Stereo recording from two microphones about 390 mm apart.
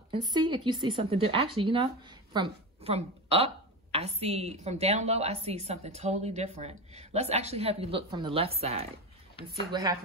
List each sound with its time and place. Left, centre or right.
0.1 s speech: centre